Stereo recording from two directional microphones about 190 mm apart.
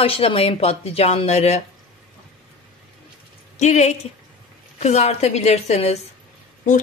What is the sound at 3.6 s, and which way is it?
Speech, 40° left (ahead or behind).